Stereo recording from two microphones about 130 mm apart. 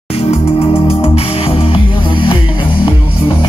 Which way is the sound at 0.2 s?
50° left (ahead or behind).